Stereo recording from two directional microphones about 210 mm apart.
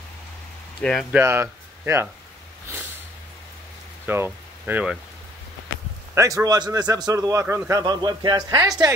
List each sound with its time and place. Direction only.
0.7 s speech: 5° left (ahead or behind)
1.1 s speech: 10° right (ahead or behind)
2.7 s sniff: 15° right (ahead or behind)
4.0 s speech: 10° right (ahead or behind)
6.1 s a man's voice: 15° right (ahead or behind)